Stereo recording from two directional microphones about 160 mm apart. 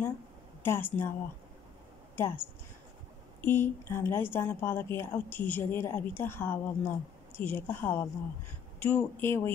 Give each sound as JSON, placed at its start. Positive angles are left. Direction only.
{"t": 0.6, "sound": "a woman's voice", "side_deg": 15}
{"t": 2.1, "sound": "a woman's voice", "side_deg": 15}